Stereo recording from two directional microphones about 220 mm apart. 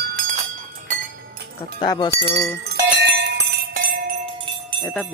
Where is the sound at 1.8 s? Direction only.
20° left (ahead or behind).